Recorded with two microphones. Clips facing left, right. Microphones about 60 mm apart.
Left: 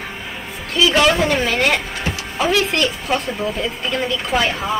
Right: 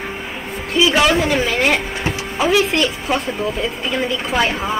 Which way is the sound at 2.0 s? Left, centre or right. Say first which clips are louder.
Right 2 dB; right.